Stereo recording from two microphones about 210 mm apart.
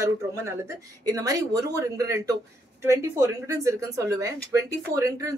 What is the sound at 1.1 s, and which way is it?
Speech, 15° right (ahead or behind).